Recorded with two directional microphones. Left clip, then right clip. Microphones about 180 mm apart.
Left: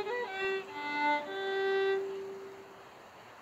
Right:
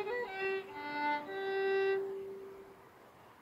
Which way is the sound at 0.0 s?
15° left (ahead or behind).